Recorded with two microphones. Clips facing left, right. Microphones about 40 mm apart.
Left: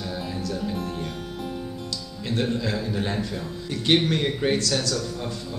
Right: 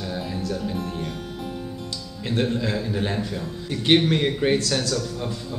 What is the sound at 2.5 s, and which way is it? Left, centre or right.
Speech, right.